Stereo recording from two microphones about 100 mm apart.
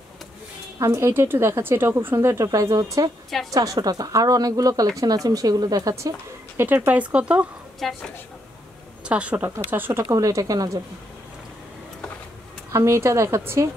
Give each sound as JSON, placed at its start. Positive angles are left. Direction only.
{"t": 0.7, "sound": "a woman's voice", "side_deg": -25}
{"t": 7.8, "sound": "a woman's voice", "side_deg": 0}
{"t": 9.0, "sound": "a woman's voice", "side_deg": -10}
{"t": 10.0, "sound": "speech", "side_deg": -35}
{"t": 12.7, "sound": "a woman's voice", "side_deg": -30}